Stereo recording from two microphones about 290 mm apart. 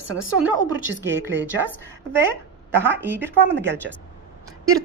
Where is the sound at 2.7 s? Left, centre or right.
Centre.